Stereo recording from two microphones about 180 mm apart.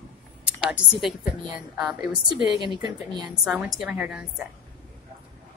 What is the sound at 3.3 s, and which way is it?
Speech, 5° right (ahead or behind).